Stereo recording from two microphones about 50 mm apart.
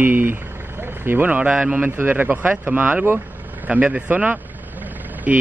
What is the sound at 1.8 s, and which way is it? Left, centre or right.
Speech, right.